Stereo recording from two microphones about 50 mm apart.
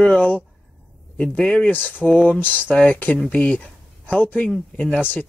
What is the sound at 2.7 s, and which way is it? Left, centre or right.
Speech, left.